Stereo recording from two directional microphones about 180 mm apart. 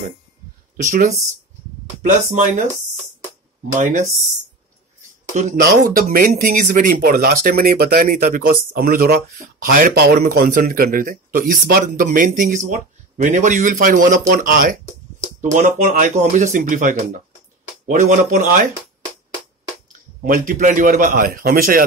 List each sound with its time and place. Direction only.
0.7 s speech: 45° right (ahead or behind)
3.7 s speech: 45° right (ahead or behind)
5.6 s speech: 55° right (ahead or behind)
20.2 s speech: 50° right (ahead or behind)